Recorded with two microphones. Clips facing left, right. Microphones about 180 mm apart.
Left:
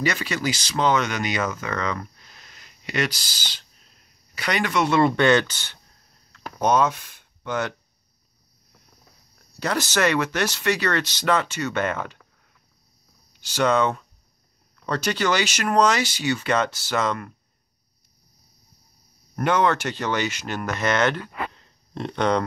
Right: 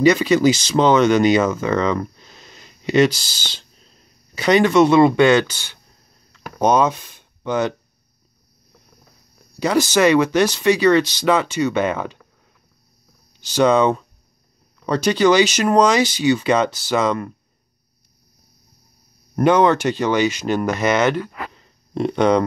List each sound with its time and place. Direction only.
0.0 s speech: 20° right (ahead or behind)
6.3 s a sound: 15° right (ahead or behind)
9.6 s speech: 15° right (ahead or behind)
13.4 s speech: 15° right (ahead or behind)
19.3 s speech: 15° right (ahead or behind)